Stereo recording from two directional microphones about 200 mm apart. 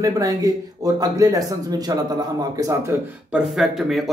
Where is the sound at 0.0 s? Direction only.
20° right (ahead or behind).